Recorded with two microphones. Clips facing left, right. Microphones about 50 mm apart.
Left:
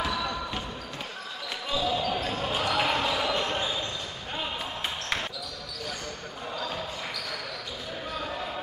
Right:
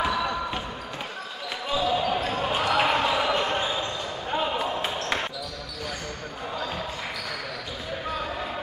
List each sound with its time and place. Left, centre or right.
0.0 s basketball bounce: centre
1.7 s basketball bounce: centre